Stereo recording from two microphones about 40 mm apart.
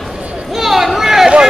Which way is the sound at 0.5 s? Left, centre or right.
Centre.